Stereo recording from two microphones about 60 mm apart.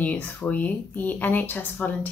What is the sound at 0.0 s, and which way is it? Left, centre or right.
A woman's voice, left.